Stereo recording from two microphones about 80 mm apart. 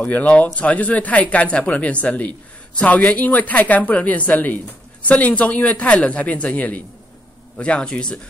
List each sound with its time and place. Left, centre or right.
0.0 s speech: centre